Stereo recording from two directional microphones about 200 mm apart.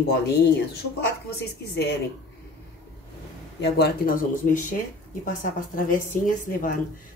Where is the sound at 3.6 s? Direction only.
55° left (ahead or behind).